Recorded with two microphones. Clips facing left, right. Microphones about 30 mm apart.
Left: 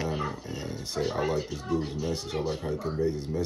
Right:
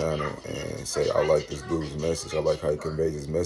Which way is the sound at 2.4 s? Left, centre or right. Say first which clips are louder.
Right 9 dB; right.